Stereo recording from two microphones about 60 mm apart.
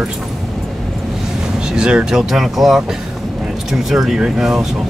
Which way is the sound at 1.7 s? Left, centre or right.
Centre.